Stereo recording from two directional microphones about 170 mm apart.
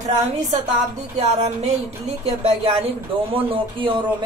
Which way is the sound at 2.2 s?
35° right (ahead or behind).